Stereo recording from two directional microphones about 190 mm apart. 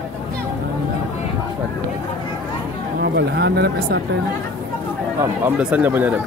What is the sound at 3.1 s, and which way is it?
Speech, 60° right (ahead or behind).